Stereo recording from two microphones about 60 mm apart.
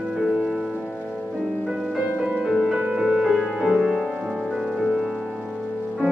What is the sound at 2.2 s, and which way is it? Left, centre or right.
Music, right.